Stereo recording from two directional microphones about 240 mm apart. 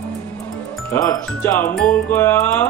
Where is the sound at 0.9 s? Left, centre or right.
Centre.